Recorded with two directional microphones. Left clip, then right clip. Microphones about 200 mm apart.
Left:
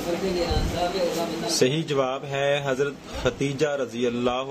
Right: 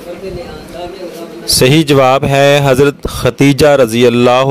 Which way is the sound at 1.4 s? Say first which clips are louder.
Right 16 dB; 55° right (ahead or behind).